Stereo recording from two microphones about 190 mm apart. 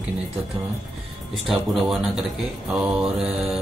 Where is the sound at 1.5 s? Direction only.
Centre (ahead or behind).